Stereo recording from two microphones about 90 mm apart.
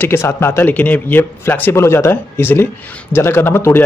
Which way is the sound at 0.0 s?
30° left (ahead or behind).